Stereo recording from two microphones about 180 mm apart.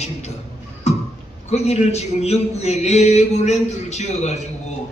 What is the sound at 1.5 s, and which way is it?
A man's voice, 35° left (ahead or behind).